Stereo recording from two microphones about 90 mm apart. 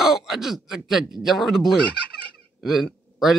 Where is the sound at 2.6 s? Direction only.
Centre (ahead or behind).